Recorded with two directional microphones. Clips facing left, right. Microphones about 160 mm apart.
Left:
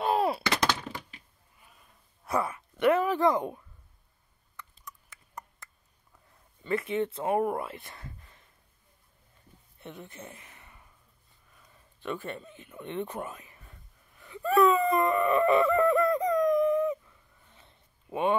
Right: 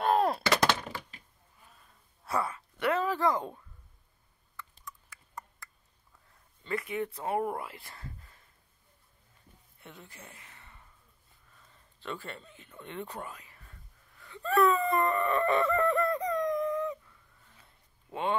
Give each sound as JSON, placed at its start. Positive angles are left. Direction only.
{"t": 0.0, "sound": "gunshot", "side_deg": 5}
{"t": 2.2, "sound": "speech", "side_deg": 20}
{"t": 4.8, "sound": "a sound", "side_deg": 20}
{"t": 6.6, "sound": "speech", "side_deg": 25}
{"t": 9.8, "sound": "gasp", "side_deg": 20}
{"t": 11.6, "sound": "a sound", "side_deg": 15}